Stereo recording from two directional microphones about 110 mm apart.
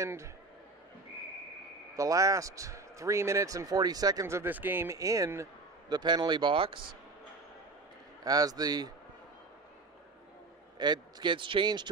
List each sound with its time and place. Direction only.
0.0 s speech: 25° right (ahead or behind)
2.0 s speech: 30° right (ahead or behind)
4.9 s speech: 30° right (ahead or behind)
5.9 s speech: 40° right (ahead or behind)
8.2 s a man's voice: 35° right (ahead or behind)
10.8 s speech: 40° right (ahead or behind)